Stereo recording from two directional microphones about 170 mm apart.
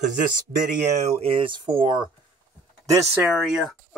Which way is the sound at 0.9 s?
35° right (ahead or behind).